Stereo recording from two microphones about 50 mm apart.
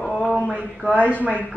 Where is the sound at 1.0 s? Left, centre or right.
Right.